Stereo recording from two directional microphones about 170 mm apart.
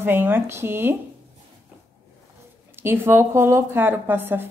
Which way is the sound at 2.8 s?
15° right (ahead or behind).